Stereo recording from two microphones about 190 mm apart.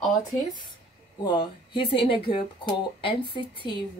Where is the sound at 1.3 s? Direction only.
25° left (ahead or behind).